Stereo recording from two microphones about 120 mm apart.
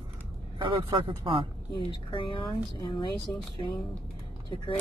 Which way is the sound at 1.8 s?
45° left (ahead or behind).